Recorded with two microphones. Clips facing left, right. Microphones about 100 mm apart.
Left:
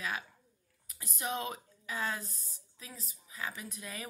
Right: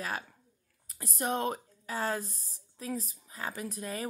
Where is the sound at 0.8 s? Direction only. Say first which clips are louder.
Right 5 dB; 40° right (ahead or behind).